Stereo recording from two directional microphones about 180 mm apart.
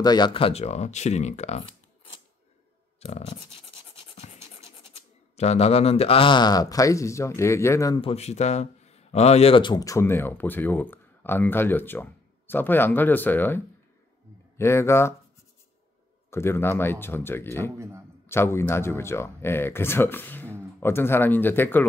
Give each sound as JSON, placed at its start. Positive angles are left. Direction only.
{"t": 0.0, "sound": "speech", "side_deg": 25}
{"t": 3.0, "sound": "scratch", "side_deg": 35}
{"t": 5.3, "sound": "speech", "side_deg": 35}
{"t": 8.0, "sound": "speech", "side_deg": 35}
{"t": 14.6, "sound": "speech", "side_deg": 15}
{"t": 16.3, "sound": "speech", "side_deg": 15}